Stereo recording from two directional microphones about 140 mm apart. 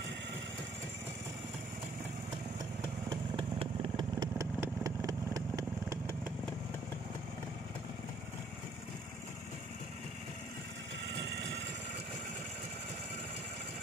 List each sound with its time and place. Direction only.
2.8 s motorcycle: 35° right (ahead or behind)
4.2 s vehicle: 25° right (ahead or behind)